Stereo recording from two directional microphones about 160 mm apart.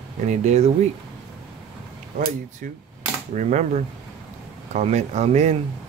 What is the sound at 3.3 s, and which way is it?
Speech, 50° right (ahead or behind).